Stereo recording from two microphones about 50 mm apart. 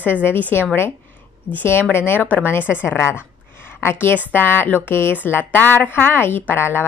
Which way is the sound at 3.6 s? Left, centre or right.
Left.